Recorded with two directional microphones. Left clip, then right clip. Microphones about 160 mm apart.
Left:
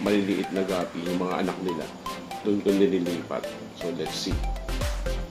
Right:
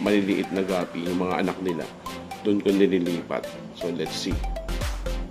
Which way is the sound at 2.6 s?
20° right (ahead or behind).